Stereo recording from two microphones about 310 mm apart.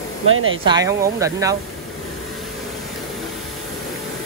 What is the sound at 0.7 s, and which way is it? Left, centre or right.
Speech, centre.